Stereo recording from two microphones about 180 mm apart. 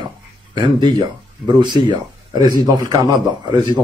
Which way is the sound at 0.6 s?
25° right (ahead or behind).